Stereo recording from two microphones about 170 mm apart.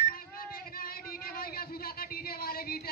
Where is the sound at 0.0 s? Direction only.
60° left (ahead or behind).